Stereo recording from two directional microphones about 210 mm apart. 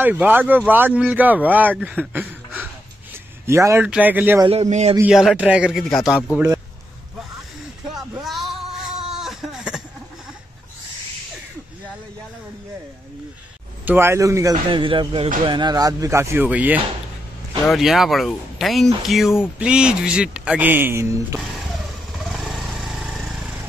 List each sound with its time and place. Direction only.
0.0 s speech: 10° right (ahead or behind)
4.5 s a man's voice: 30° right (ahead or behind)
4.9 s speech: 5° right (ahead or behind)
6.3 s a man's voice: 15° right (ahead or behind)
8.2 s music: centre (ahead or behind)
9.1 s a sound: centre (ahead or behind)
13.8 s speech: 10° right (ahead or behind)
22.1 s motorcycle: centre (ahead or behind)